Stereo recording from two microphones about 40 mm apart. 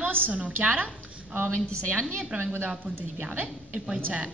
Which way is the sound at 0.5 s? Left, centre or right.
Right.